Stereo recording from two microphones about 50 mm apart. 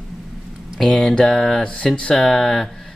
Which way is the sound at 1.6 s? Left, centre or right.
Left.